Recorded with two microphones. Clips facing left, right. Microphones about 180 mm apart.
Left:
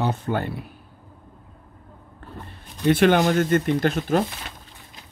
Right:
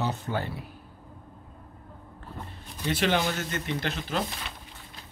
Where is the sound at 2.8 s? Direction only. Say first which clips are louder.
Left 9 dB; 55° left (ahead or behind).